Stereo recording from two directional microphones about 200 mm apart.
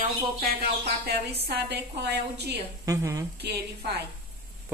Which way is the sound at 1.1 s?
55° right (ahead or behind).